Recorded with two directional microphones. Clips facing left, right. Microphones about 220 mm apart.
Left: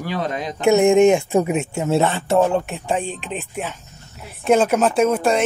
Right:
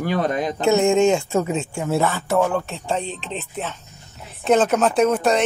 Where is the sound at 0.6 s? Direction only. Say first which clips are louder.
Left 4 dB; 15° left (ahead or behind).